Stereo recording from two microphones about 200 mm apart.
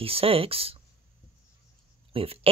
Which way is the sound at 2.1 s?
30° right (ahead or behind).